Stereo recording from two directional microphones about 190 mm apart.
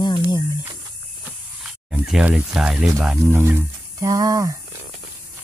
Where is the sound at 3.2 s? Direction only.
15° right (ahead or behind).